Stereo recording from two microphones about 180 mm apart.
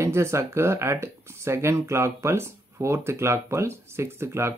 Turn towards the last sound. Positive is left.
turn(degrees=-15)  # may be behind; listen again after turning